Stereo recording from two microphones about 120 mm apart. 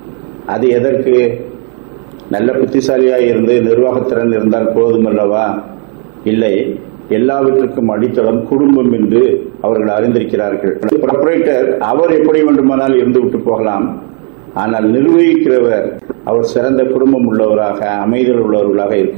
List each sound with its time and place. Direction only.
0.5 s a man's voice: 15° right (ahead or behind)
2.3 s a man's voice: 20° right (ahead or behind)